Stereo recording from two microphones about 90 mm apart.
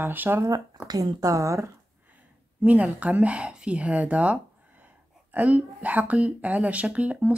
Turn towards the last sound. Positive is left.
turn(degrees=-15)  # may be behind; listen again after turning